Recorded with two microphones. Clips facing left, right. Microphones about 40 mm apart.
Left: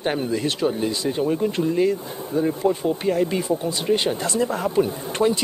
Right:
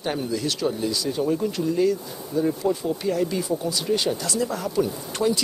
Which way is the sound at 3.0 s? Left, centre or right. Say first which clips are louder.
Left 3 dB; left.